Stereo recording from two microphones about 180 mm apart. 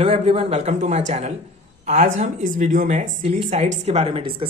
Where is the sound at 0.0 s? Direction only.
35° right (ahead or behind).